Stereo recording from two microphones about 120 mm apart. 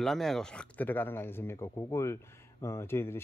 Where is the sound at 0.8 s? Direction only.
15° left (ahead or behind).